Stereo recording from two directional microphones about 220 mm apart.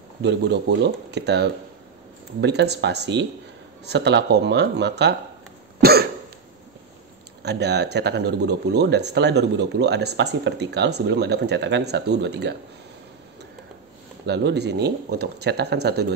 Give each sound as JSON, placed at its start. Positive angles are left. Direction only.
{"t": 0.2, "sound": "speech", "side_deg": -50}
{"t": 5.8, "sound": "cough", "side_deg": -45}
{"t": 7.4, "sound": "speech", "side_deg": -50}
{"t": 14.2, "sound": "speech", "side_deg": -50}